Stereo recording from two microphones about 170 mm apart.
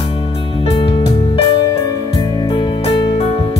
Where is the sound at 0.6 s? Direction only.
30° left (ahead or behind).